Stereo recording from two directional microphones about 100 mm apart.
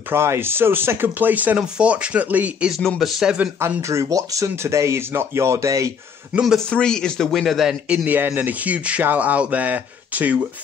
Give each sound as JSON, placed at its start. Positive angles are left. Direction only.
{"t": 0.1, "sound": "speech", "side_deg": -25}
{"t": 3.0, "sound": "speech", "side_deg": -5}
{"t": 3.5, "sound": "speech", "side_deg": -25}
{"t": 6.7, "sound": "a man's voice", "side_deg": 5}